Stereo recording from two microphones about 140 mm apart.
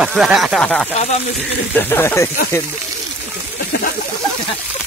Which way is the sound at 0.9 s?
55° left (ahead or behind).